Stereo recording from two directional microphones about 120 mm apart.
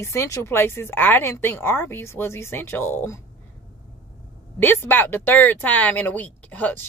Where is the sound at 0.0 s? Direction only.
20° left (ahead or behind).